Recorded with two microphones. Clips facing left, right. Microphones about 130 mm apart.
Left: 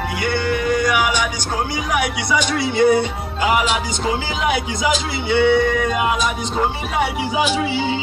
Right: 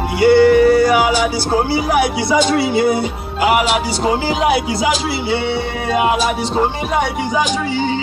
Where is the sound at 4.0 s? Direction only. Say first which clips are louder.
Right 5 dB; 35° right (ahead or behind).